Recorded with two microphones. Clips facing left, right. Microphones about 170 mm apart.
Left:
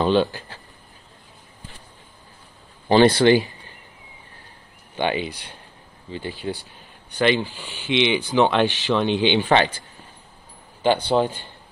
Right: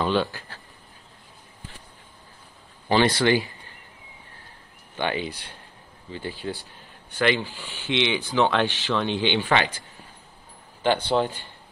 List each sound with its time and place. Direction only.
0.0 s speech: 20° left (ahead or behind)
2.9 s speech: 25° left (ahead or behind)
4.9 s speech: 20° left (ahead or behind)
10.8 s speech: 15° left (ahead or behind)